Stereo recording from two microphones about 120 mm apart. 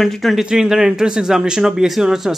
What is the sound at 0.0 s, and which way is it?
Speech, centre (ahead or behind).